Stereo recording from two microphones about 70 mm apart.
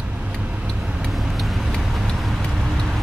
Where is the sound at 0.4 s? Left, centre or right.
Centre.